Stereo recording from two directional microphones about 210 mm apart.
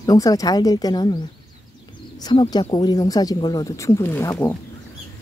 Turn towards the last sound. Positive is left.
turn(degrees=10)  # may be behind; listen again after turning